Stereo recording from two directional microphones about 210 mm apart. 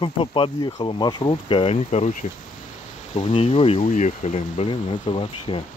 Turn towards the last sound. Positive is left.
turn(degrees=25)  # may be behind; listen again after turning